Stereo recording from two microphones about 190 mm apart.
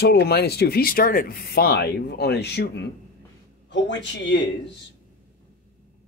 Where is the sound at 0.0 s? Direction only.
60° left (ahead or behind).